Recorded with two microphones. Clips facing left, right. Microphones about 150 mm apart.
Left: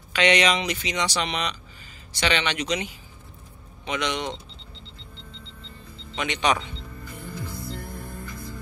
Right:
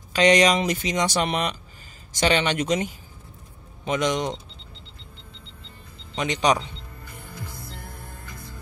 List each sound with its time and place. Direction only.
0.1 s speech: 40° right (ahead or behind)
6.1 s speech: 40° right (ahead or behind)